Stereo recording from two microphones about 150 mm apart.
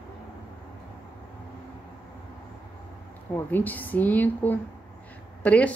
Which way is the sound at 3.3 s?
10° left (ahead or behind).